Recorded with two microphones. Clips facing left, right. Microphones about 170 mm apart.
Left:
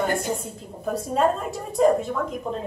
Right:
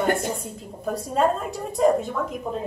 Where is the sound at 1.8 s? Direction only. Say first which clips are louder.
Left 1 dB; centre (ahead or behind).